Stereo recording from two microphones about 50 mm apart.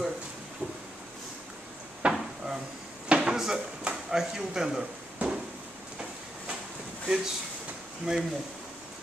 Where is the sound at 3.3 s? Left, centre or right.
Centre.